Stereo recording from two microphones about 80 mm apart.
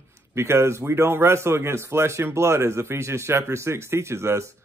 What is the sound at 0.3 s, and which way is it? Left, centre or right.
Speech, right.